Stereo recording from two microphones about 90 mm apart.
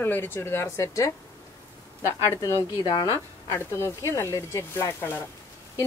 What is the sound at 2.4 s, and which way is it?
Speech, 50° left (ahead or behind).